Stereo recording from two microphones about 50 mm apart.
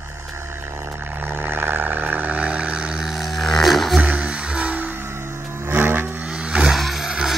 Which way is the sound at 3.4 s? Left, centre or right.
Centre.